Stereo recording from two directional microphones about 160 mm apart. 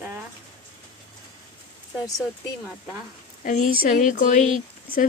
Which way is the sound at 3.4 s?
55° left (ahead or behind).